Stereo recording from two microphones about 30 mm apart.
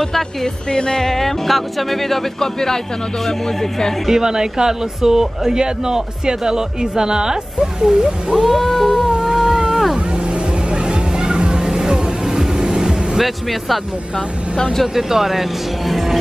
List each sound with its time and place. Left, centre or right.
0.0 s speech: centre
0.7 s music: left
1.0 s speech: centre
4.1 s speech: right
8.5 s a sound: centre
9.2 s a sound: centre
9.5 s whale vocalization: right
10.7 s music: right
11.8 s music: centre
13.2 s speech: centre
15.0 s speech: centre
15.9 s music: centre